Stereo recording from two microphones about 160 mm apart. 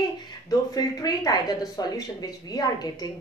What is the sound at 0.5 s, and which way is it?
A woman's voice, 25° left (ahead or behind).